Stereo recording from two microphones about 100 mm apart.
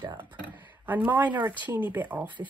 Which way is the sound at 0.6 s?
20° right (ahead or behind).